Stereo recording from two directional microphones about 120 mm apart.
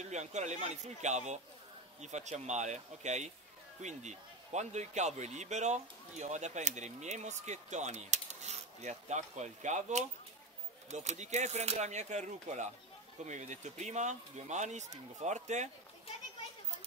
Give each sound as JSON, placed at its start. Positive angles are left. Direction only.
{"t": 0.0, "sound": "a man's voice", "side_deg": -75}